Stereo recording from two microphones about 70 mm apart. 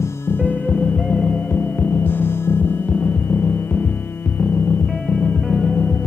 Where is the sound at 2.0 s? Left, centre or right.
Left.